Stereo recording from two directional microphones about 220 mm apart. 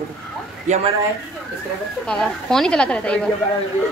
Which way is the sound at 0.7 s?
35° right (ahead or behind).